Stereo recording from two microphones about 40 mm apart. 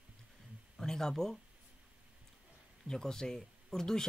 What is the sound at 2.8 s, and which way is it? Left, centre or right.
Speech, centre.